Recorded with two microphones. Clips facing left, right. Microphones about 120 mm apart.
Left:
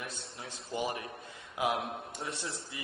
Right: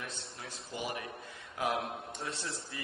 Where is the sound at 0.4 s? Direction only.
25° left (ahead or behind).